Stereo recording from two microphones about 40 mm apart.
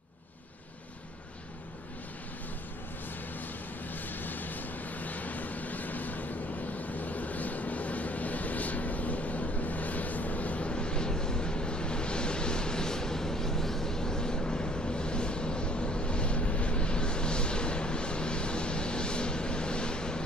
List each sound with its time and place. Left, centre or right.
3.9 s vehicle: left